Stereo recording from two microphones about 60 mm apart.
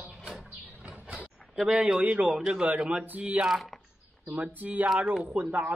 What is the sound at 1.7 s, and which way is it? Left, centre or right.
Speech, right.